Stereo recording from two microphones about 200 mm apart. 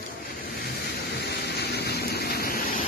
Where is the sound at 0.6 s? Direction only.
55° left (ahead or behind).